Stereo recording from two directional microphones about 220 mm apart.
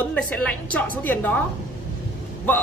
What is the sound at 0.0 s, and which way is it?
A man's voice, 5° left (ahead or behind).